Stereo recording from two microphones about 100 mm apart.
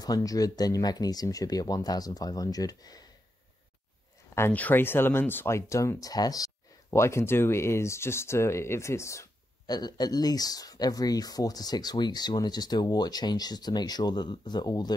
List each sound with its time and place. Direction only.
0.0 s speech: 40° left (ahead or behind)
4.4 s speech: 15° left (ahead or behind); by 6.5 s 40° left (ahead or behind)
6.9 s speech: 25° left (ahead or behind)
9.7 s speech: 40° left (ahead or behind)